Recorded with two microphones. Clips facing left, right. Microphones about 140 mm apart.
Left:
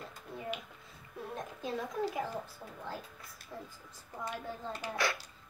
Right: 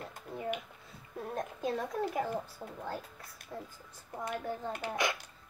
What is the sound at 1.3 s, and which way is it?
Speech, 50° right (ahead or behind).